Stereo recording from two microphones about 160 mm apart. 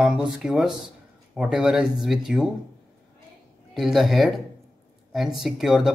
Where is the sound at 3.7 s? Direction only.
Centre (ahead or behind).